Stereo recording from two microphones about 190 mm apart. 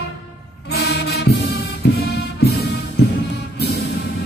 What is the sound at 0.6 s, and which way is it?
Music, 60° left (ahead or behind).